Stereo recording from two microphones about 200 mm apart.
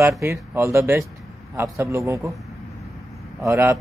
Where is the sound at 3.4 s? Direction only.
15° right (ahead or behind).